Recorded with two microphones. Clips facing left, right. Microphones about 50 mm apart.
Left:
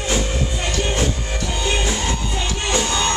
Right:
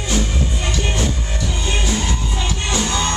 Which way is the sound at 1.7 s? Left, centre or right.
Left.